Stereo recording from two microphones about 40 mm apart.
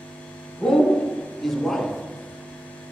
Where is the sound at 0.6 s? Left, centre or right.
Left.